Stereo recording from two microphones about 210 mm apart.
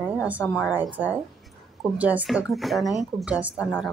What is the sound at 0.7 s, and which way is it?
Speech, 10° right (ahead or behind).